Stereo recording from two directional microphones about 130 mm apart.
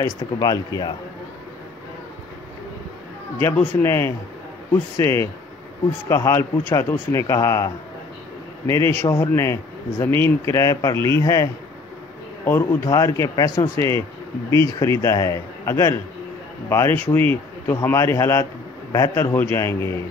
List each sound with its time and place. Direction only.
0.0 s speech: 30° left (ahead or behind)
3.3 s a man's voice: 20° left (ahead or behind)
12.4 s a man's voice: 20° left (ahead or behind)